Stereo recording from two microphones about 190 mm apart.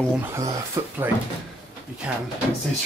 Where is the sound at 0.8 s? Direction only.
15° right (ahead or behind).